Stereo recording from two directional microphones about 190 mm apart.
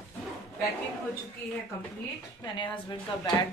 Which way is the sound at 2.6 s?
25° left (ahead or behind).